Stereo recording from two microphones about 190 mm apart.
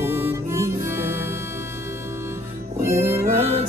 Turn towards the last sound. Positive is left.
turn(degrees=-35)  # may be behind; listen again after turning